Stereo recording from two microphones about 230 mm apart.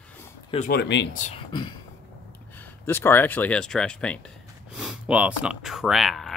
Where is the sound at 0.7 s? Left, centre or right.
Left.